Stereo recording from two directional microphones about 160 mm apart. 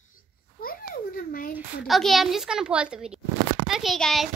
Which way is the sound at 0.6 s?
65° left (ahead or behind).